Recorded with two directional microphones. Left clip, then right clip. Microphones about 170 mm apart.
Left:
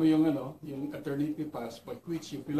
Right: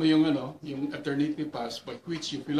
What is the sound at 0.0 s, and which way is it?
Speech, 45° right (ahead or behind).